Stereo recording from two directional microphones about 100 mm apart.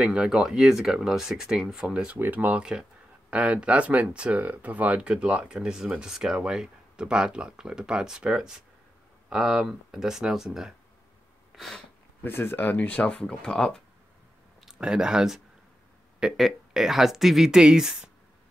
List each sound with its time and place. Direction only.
0.0 s speech: 5° right (ahead or behind)
2.1 s speech: 20° right (ahead or behind)
11.5 s a sound: centre (ahead or behind)
12.2 s speech: 20° left (ahead or behind)
14.7 s speech: 10° right (ahead or behind)